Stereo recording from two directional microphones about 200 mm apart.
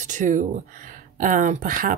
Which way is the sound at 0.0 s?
40° right (ahead or behind).